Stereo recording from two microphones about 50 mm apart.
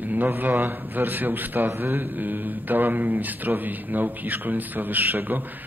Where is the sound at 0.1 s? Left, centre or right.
Right.